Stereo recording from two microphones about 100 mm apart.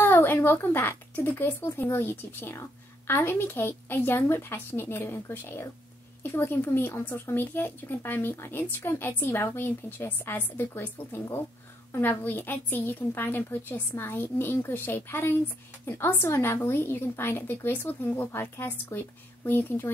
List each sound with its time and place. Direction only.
0.0 s speech: 20° left (ahead or behind)